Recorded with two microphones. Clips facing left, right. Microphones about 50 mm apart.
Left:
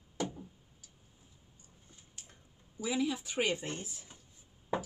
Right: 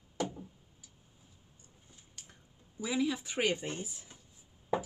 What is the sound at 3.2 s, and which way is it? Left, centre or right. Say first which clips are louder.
Speech: right 1 dB; right.